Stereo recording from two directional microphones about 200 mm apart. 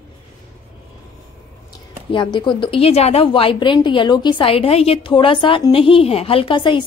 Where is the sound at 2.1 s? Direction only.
25° left (ahead or behind).